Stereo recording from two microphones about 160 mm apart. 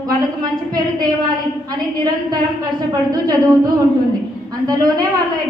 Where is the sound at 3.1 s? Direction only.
25° right (ahead or behind).